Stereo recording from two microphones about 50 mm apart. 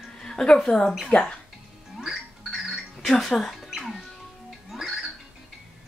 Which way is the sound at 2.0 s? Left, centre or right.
Centre.